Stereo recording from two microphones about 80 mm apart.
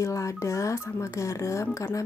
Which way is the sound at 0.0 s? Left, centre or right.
Left.